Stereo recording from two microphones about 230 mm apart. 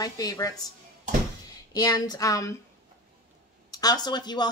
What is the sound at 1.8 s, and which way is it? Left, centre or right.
Speech, centre.